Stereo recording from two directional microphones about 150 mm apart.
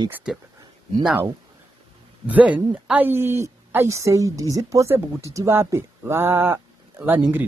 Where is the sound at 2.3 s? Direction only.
10° right (ahead or behind).